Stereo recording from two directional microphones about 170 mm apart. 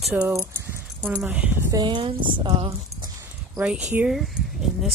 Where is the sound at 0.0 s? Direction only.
5° right (ahead or behind).